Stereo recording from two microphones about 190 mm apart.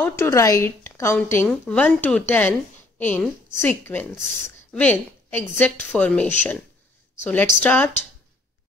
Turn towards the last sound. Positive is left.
turn(degrees=10)  # may be behind; listen again after turning